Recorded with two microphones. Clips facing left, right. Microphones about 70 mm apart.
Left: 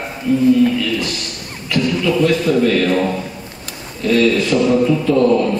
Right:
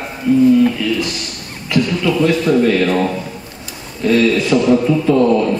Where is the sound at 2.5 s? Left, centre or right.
Centre.